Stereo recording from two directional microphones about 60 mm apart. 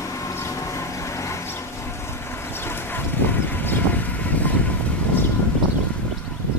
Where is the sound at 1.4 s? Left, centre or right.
Left.